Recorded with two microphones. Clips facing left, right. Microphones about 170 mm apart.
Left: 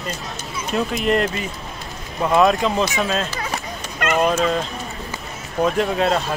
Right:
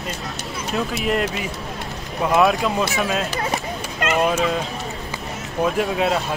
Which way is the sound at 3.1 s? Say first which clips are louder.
Right 1 dB; 15° right (ahead or behind).